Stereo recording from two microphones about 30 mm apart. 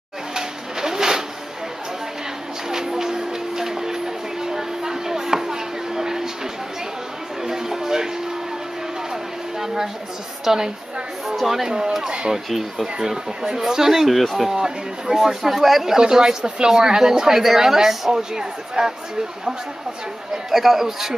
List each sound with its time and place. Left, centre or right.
0.3 s pigeon: centre
2.7 s music: centre
7.4 s music: centre
10.4 s a woman's voice: centre
12.0 s speech: right
12.4 s speech: centre
13.0 s speech: centre
14.1 s speech: centre
14.5 s speech: centre
16.0 s speech: right
20.5 s speech: centre